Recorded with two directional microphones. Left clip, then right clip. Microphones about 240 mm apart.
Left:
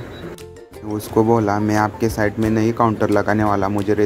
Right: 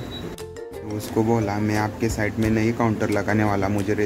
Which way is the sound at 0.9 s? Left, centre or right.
Centre.